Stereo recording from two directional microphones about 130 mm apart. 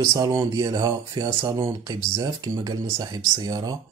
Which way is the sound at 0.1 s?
25° right (ahead or behind).